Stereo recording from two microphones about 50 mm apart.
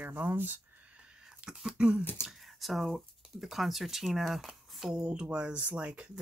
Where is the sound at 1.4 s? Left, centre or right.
Centre.